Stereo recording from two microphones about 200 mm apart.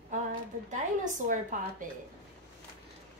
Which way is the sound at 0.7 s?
40° right (ahead or behind).